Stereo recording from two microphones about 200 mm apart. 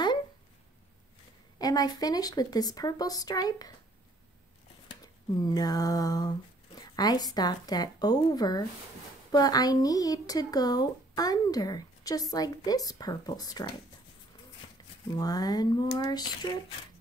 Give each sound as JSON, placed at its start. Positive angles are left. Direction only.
{"t": 1.6, "sound": "speech", "side_deg": 20}
{"t": 4.8, "sound": "speech", "side_deg": 20}
{"t": 14.8, "sound": "a sound", "side_deg": 20}
{"t": 15.1, "sound": "speech", "side_deg": 20}